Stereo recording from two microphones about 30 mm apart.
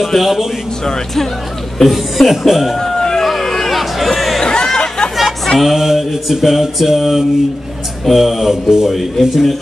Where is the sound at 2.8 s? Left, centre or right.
Centre.